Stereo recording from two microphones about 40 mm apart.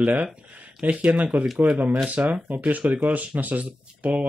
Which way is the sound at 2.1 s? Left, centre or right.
Right.